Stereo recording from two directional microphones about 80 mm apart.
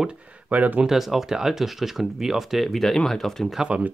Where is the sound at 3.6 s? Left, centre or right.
Centre.